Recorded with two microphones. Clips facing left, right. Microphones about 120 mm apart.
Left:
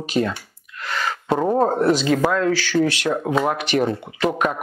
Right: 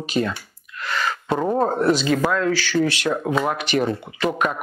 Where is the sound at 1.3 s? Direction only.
25° left (ahead or behind).